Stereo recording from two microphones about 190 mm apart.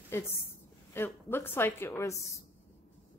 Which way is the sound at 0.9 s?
10° left (ahead or behind).